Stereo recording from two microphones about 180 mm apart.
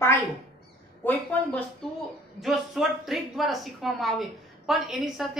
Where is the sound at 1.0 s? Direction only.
10° left (ahead or behind).